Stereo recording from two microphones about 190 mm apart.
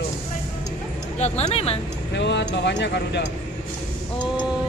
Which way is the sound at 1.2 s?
35° left (ahead or behind).